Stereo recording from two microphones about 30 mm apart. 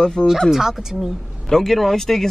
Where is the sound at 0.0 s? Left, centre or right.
Left.